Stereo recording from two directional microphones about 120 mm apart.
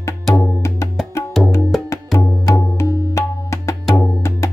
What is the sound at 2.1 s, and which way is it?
Tabla, 25° left (ahead or behind).